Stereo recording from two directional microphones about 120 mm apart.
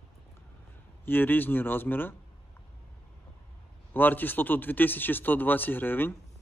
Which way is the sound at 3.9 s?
15° left (ahead or behind).